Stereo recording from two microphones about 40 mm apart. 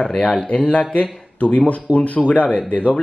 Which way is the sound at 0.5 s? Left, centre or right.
Left.